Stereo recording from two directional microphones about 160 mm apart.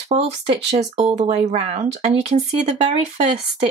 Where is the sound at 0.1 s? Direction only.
40° right (ahead or behind).